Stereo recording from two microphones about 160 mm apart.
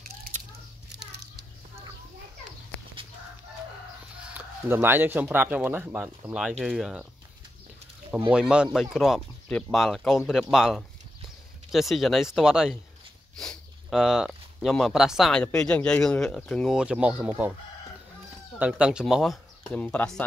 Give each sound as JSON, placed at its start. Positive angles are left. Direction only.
{"t": 0.8, "sound": "children playing", "side_deg": -90}
{"t": 4.3, "sound": "speech", "side_deg": -15}
{"t": 8.3, "sound": "speech", "side_deg": -5}
{"t": 18.6, "sound": "speech", "side_deg": -5}